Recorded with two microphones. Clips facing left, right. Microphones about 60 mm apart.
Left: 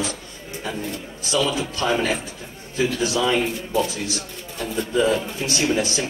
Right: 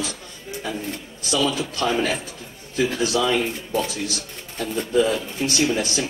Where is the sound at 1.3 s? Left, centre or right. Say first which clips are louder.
Even; left.